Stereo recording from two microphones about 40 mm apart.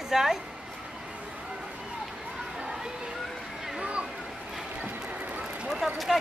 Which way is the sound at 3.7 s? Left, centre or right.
Right.